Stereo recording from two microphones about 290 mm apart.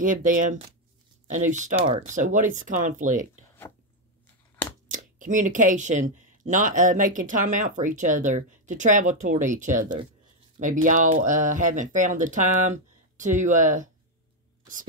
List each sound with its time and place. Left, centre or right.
0.0 s speech: right
4.9 s speech: right